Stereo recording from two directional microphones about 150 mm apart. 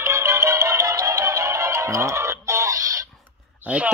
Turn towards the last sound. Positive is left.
turn(degrees=-10)  # may be behind; listen again after turning